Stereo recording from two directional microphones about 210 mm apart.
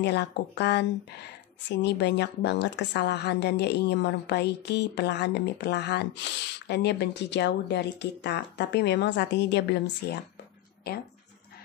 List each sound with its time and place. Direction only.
0.0 s a woman's voice: 55° left (ahead or behind)